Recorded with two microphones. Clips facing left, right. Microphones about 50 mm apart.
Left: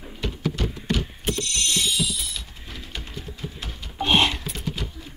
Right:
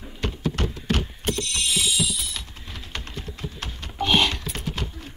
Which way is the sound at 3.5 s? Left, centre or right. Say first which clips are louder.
Right 2 dB; right.